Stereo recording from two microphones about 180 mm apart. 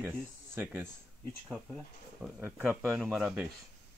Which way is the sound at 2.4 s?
10° right (ahead or behind).